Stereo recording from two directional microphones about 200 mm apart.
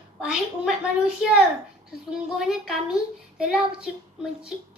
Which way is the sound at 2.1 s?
5° right (ahead or behind).